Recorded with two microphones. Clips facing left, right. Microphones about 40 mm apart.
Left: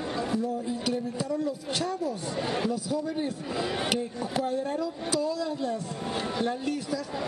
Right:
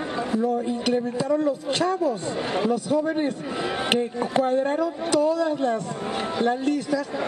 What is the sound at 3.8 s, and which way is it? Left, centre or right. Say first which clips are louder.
Speech: right 6 dB; right.